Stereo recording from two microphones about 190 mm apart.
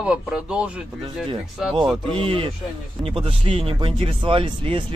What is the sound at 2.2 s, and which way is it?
Speech, 30° right (ahead or behind).